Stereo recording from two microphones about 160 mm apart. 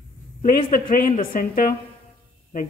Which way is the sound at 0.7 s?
60° left (ahead or behind).